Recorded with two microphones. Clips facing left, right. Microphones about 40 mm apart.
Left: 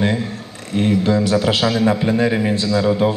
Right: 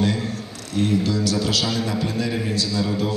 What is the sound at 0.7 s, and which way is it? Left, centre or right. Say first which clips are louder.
A man's voice: left 5 dB; left.